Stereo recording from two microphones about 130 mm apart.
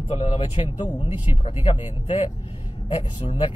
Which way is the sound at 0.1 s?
40° left (ahead or behind).